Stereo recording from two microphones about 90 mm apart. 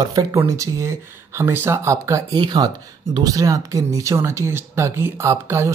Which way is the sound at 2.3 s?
55° right (ahead or behind).